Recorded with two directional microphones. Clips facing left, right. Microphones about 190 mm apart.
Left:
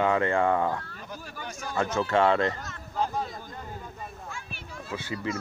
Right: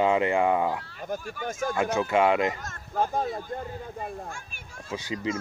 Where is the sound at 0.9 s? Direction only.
50° right (ahead or behind).